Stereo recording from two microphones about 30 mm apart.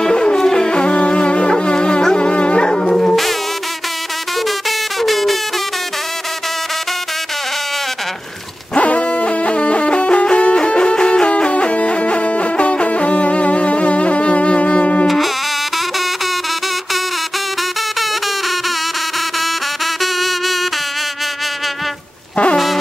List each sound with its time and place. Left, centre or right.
0.0 s music: left
4.5 s music: centre
8.7 s music: left
15.0 s music: centre
20.0 s music: centre